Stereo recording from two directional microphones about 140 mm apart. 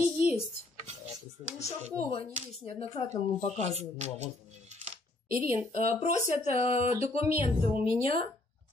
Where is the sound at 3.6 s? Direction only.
55° right (ahead or behind).